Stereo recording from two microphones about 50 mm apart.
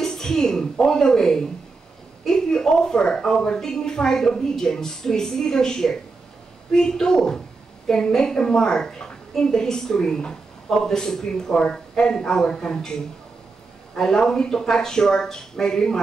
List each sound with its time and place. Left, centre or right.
0.0 s a woman's voice: centre